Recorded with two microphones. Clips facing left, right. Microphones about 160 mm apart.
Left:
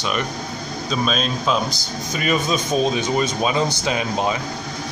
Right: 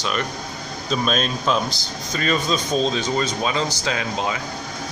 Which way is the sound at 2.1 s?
10° left (ahead or behind).